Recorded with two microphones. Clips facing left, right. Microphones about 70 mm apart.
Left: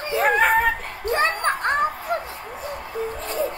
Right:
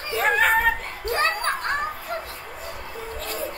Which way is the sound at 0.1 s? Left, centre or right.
Centre.